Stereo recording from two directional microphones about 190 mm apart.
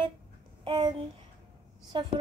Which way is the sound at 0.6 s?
25° right (ahead or behind).